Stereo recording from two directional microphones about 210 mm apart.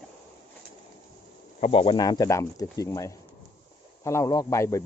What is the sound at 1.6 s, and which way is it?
Speech, 25° left (ahead or behind).